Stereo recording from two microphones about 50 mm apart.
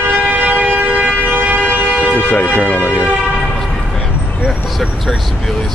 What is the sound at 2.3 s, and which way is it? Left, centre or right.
Speech, left.